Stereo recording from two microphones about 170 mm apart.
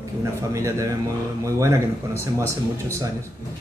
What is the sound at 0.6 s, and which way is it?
Speech, 15° right (ahead or behind).